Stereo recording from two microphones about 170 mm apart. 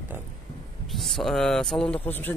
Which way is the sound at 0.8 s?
Centre (ahead or behind).